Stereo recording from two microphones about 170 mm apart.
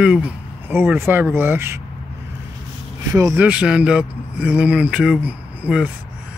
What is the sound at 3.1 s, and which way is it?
A man's voice, 15° right (ahead or behind).